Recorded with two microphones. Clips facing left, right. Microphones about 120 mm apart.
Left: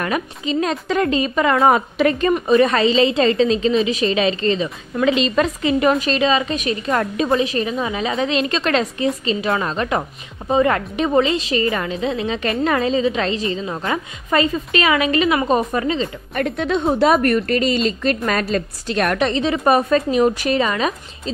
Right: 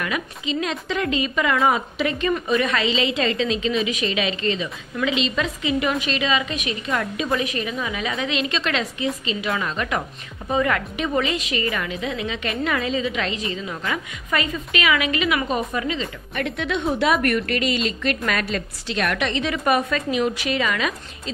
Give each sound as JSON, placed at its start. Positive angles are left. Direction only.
{"t": 0.0, "sound": "a woman's voice", "side_deg": 40}
{"t": 2.4, "sound": "a woman's voice", "side_deg": 35}